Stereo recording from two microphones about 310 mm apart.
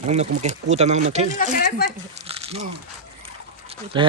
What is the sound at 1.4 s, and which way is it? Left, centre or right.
Speech, left.